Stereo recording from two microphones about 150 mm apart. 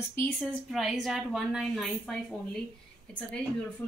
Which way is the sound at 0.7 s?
Centre (ahead or behind).